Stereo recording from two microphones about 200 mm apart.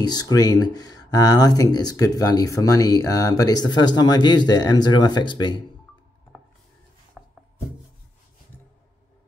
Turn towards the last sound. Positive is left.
turn(degrees=-5)  # may be behind; listen again after turning